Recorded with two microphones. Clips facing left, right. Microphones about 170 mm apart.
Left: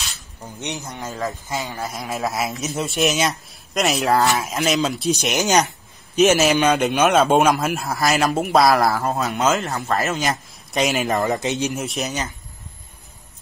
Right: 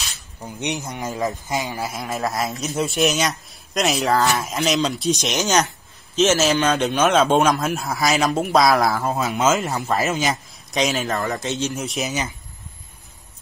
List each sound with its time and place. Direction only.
0.4 s speech: 15° right (ahead or behind)
1.9 s speech: centre (ahead or behind)
6.1 s a man's voice: 15° left (ahead or behind)
11.1 s a man's voice: 20° left (ahead or behind)
11.7 s speech: centre (ahead or behind)